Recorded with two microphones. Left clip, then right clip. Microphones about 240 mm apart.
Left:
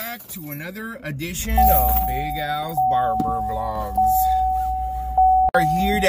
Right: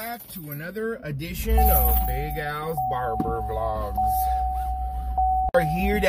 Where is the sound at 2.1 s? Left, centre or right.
Centre.